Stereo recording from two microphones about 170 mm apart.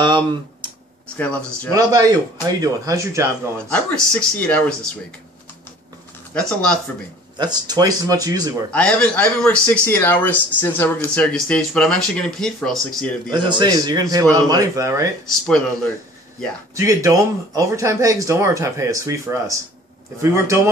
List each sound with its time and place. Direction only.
0.0 s speech: 25° right (ahead or behind)
1.0 s speech: 10° left (ahead or behind)
1.7 s speech: 20° right (ahead or behind)
3.7 s speech: 5° left (ahead or behind)
6.3 s speech: 5° left (ahead or behind)
7.3 s speech: 25° right (ahead or behind)
8.7 s a man's voice: 5° left (ahead or behind)
13.3 s speech: 25° right (ahead or behind)
15.2 s speech: 5° left (ahead or behind)
16.7 s speech: 20° right (ahead or behind)